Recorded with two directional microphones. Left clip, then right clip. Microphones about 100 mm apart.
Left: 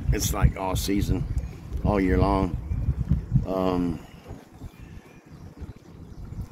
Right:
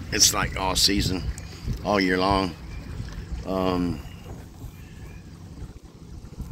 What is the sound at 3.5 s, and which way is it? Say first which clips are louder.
Speech: right 1 dB; 20° left (ahead or behind).